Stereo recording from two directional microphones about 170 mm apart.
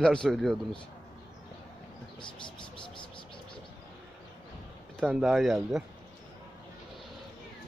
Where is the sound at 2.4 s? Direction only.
30° left (ahead or behind).